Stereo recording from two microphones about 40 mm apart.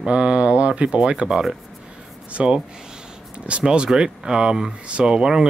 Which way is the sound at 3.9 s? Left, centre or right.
Centre.